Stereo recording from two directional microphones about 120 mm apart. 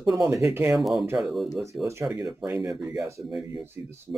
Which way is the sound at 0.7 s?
Centre (ahead or behind).